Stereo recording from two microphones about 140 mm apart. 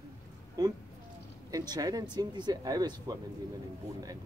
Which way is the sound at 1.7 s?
30° right (ahead or behind).